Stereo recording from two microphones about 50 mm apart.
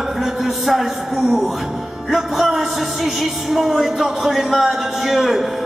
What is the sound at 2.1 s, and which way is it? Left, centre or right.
Music, centre.